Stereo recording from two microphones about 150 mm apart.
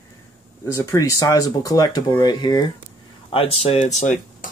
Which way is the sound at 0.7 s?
20° left (ahead or behind).